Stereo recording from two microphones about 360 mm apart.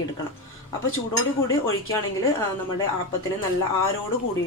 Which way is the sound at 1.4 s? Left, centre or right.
Left.